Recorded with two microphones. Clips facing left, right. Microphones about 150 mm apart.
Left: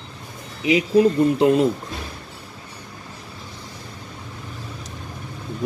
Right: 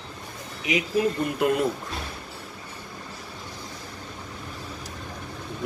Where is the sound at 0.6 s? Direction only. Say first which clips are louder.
Left 8 dB; 30° left (ahead or behind).